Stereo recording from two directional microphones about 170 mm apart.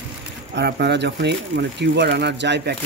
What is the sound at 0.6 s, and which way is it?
Speech, 85° right.